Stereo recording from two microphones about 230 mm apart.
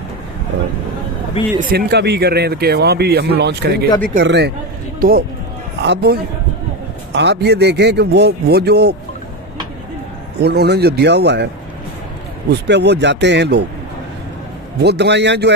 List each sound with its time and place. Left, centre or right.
1.6 s speech: right
5.8 s a man's voice: right
10.4 s speech: right
12.4 s speech: right
14.8 s speech: right